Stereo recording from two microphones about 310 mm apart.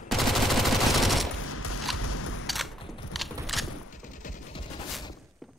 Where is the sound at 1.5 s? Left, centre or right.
Left.